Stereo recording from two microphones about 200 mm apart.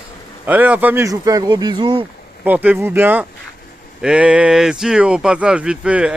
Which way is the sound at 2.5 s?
10° right (ahead or behind).